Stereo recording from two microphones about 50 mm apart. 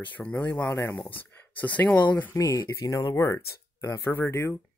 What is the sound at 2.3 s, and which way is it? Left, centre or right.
Speech, left.